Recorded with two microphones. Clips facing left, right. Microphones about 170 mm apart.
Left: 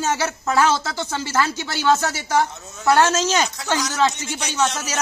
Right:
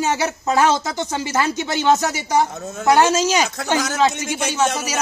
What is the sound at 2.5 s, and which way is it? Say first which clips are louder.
Speech: right 10 dB; 55° right (ahead or behind).